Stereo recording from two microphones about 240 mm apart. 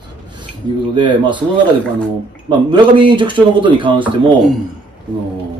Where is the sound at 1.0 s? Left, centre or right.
Centre.